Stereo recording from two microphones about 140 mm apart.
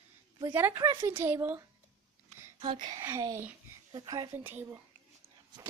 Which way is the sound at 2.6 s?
35° right (ahead or behind).